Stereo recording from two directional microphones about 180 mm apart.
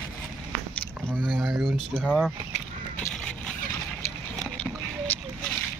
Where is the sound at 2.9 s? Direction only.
5° left (ahead or behind).